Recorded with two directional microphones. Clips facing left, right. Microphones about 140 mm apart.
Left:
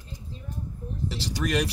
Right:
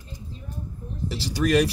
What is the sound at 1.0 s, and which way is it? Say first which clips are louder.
Speech: right 5 dB; centre (ahead or behind).